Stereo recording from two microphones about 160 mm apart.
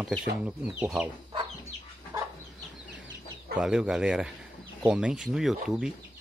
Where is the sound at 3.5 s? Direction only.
5° right (ahead or behind).